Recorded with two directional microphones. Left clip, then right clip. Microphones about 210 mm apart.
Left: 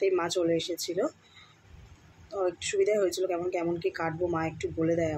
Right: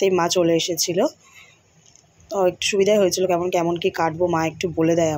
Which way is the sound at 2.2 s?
30° right (ahead or behind).